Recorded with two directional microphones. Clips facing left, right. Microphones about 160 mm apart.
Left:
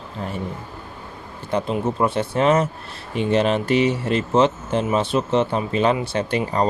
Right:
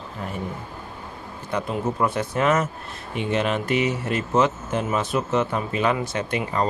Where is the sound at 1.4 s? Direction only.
30° left (ahead or behind).